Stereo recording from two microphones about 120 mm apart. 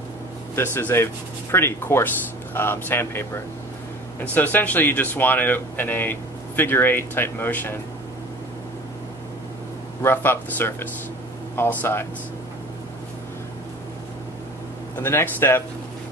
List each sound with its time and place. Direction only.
0.6 s speech: 20° left (ahead or behind)
10.0 s speech: 20° left (ahead or behind)
15.0 s speech: 20° left (ahead or behind)